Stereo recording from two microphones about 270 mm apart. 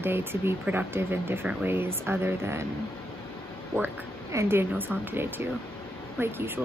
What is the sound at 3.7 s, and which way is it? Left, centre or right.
Speech, centre.